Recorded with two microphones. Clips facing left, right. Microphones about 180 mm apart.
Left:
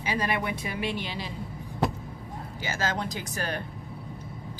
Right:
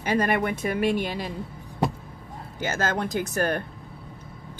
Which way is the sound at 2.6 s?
50° right (ahead or behind).